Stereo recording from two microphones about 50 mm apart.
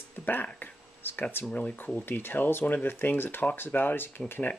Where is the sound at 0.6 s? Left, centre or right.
Left.